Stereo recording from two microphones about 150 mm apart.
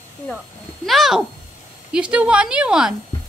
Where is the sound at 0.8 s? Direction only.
Centre (ahead or behind).